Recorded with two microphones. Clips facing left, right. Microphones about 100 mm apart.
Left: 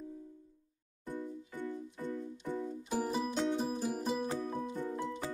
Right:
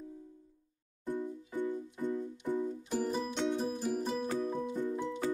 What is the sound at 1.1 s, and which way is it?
Music, 15° right (ahead or behind).